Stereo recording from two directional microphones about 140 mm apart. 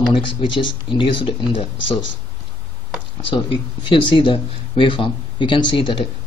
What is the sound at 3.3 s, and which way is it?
Speech, 35° left (ahead or behind).